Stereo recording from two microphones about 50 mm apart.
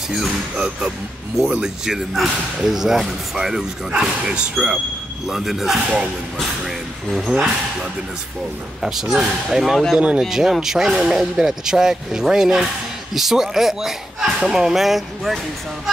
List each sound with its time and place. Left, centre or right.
0.1 s speech: centre
4.6 s speech: centre
5.2 s speech: centre
8.8 s speech: centre